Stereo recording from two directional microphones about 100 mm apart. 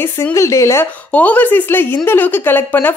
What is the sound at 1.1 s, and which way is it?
A woman's voice, 15° left (ahead or behind).